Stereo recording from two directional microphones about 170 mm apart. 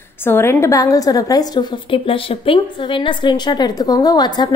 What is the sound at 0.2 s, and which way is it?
A woman's voice, 15° left (ahead or behind).